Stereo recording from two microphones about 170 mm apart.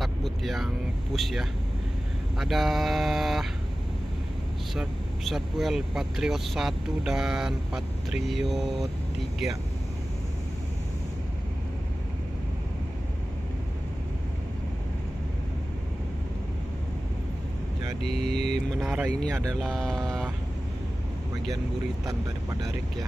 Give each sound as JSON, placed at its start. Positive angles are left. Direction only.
{"t": 0.0, "sound": "vehicle", "side_deg": 0}
{"t": 1.1, "sound": "speech", "side_deg": 0}
{"t": 4.7, "sound": "speech", "side_deg": 0}
{"t": 18.0, "sound": "speech", "side_deg": -70}
{"t": 18.8, "sound": "speech", "side_deg": -10}
{"t": 19.6, "sound": "speech", "side_deg": 5}
{"t": 22.0, "sound": "speech", "side_deg": -20}